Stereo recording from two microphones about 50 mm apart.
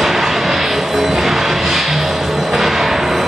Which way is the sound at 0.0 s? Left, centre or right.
Centre.